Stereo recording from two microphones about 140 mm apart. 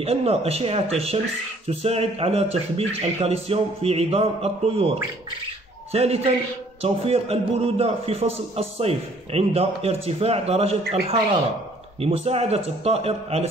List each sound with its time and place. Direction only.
0.0 s speech: 45° right (ahead or behind)